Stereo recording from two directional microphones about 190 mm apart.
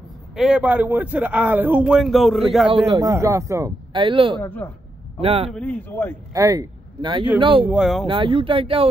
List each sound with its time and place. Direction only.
0.4 s a man's voice: 5° right (ahead or behind)
3.0 s a man's voice: 15° right (ahead or behind)
4.4 s speech: 10° left (ahead or behind)
5.2 s speech: 30° right (ahead or behind)
5.5 s speech: 10° left (ahead or behind)
6.3 s speech: 15° right (ahead or behind)
7.6 s speech: 5° right (ahead or behind)
8.1 s speech: 25° right (ahead or behind)